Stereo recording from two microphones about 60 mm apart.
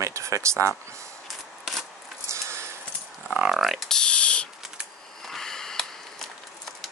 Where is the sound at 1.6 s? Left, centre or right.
Centre.